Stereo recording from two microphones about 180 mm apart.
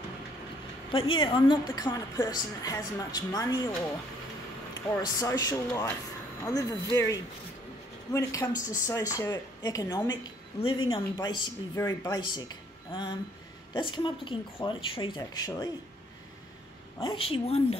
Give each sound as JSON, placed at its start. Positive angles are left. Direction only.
{"t": 0.9, "sound": "a woman's voice", "side_deg": 30}
{"t": 4.8, "sound": "a woman's voice", "side_deg": 20}
{"t": 17.0, "sound": "a woman's voice", "side_deg": 30}